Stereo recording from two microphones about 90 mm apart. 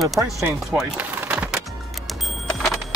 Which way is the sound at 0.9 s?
25° right (ahead or behind).